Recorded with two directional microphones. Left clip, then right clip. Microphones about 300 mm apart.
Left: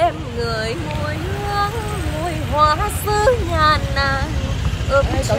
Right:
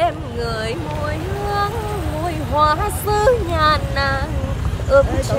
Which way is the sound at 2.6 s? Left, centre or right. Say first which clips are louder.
Left 1 dB; centre.